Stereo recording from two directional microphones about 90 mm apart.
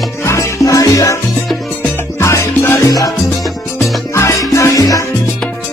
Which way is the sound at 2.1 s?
35° left (ahead or behind).